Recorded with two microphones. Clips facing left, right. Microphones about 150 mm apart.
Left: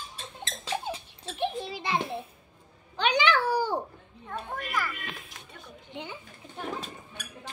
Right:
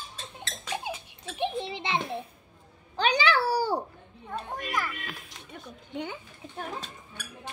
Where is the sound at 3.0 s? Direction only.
35° right (ahead or behind).